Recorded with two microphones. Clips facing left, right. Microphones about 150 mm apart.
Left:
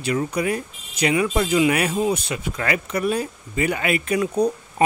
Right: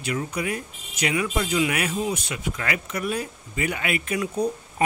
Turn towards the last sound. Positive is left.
turn(degrees=35)  # may be behind; listen again after turning